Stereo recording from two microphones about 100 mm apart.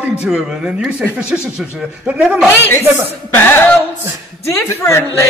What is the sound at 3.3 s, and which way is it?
Music, 20° left (ahead or behind).